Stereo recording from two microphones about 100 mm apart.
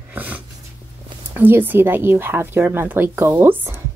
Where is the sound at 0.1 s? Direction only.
15° right (ahead or behind).